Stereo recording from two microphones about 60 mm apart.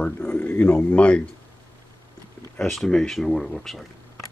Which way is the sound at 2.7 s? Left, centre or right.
Centre.